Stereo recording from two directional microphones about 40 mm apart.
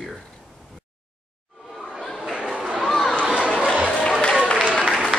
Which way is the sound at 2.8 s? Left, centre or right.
Centre.